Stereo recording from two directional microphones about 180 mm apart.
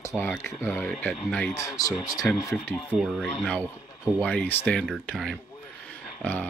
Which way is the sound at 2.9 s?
Centre (ahead or behind).